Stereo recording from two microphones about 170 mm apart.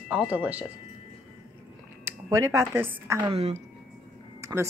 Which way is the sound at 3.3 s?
40° right (ahead or behind).